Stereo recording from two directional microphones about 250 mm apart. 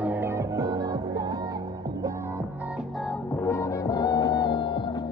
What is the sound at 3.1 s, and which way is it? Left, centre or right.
Music, centre.